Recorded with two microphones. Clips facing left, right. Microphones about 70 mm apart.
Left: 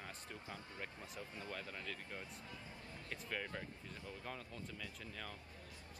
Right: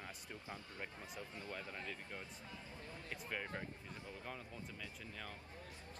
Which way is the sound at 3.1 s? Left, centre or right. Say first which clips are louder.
Even; centre.